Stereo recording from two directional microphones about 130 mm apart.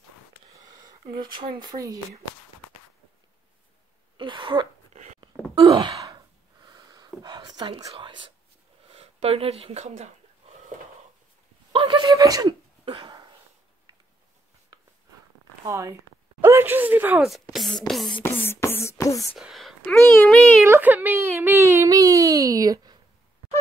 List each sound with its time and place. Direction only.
1.7 s speech: 50° right (ahead or behind)
4.2 s throat clearing: 40° right (ahead or behind)
4.9 s a sound: 65° right (ahead or behind)
5.5 s sigh: 30° right (ahead or behind)
6.0 s a sound: 30° right (ahead or behind)
7.9 s speech: 40° right (ahead or behind)
8.9 s speech: 50° right (ahead or behind)
11.8 s a sound: 30° right (ahead or behind)
15.6 s a sound: 20° right (ahead or behind)
17.3 s speech: centre (ahead or behind)
18.2 s beatboxing: 15° left (ahead or behind)
19.3 s speech: centre (ahead or behind)
20.6 s speech: 15° right (ahead or behind)